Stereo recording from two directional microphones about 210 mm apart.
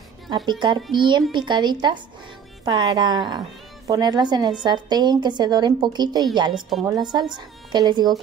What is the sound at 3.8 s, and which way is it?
A woman's voice, 15° right (ahead or behind).